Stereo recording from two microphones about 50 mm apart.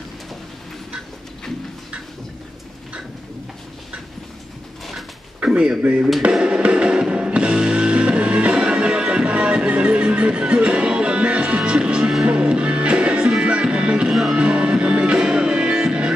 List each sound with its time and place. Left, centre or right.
5.4 s speech: centre
6.3 s music: centre